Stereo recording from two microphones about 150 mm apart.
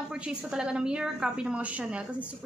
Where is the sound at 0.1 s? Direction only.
5° right (ahead or behind).